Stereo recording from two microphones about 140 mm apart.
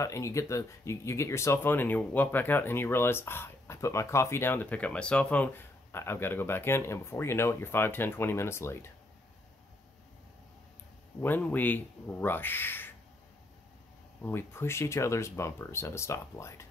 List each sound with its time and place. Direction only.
0.0 s speech: 20° left (ahead or behind)
11.1 s speech: 15° left (ahead or behind)
14.2 s speech: 15° left (ahead or behind)